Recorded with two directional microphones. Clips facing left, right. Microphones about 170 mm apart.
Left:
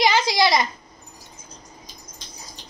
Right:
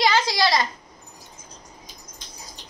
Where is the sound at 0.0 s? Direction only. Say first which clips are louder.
Left 2 dB; 15° left (ahead or behind).